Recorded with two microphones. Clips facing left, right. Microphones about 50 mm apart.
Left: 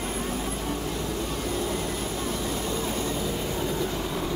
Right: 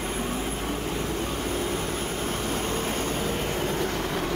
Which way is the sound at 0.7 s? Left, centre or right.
Right.